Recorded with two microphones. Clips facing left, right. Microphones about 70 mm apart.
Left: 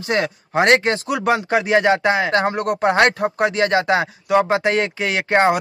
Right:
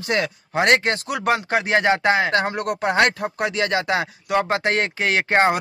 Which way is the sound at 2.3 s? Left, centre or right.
Left.